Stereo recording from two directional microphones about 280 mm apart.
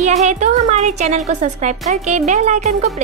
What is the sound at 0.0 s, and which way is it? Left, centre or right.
A woman's voice, right.